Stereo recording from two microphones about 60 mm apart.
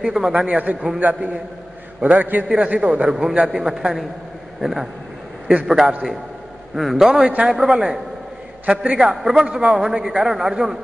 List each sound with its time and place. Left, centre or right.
0.0 s a man's voice: centre
0.5 s a man's voice: right
2.4 s a man's voice: centre
7.2 s a man's voice: right
7.5 s a man's voice: centre
9.1 s a man's voice: centre
9.6 s a man's voice: centre